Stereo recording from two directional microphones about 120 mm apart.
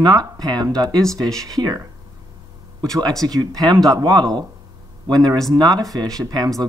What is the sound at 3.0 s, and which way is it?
Speech, 35° right (ahead or behind).